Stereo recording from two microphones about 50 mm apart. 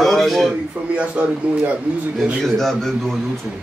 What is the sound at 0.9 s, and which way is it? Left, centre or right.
Speech, right.